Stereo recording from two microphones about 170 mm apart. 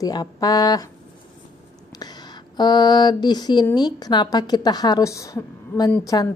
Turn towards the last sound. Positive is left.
turn(degrees=20)  # may be behind; listen again after turning